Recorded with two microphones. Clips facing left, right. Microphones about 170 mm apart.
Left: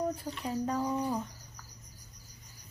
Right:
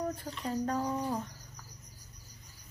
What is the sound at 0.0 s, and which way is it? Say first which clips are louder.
Speech: left 2 dB; 5° left (ahead or behind).